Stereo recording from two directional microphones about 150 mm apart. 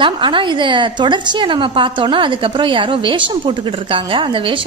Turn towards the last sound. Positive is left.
turn(degrees=-35)  # may be behind; listen again after turning